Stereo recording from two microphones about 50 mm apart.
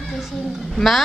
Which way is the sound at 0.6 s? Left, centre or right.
Centre.